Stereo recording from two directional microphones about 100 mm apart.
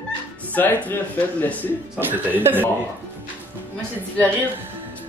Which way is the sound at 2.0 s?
20° right (ahead or behind).